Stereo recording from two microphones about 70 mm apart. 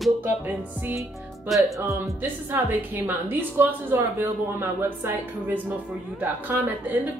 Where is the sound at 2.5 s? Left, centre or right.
Right.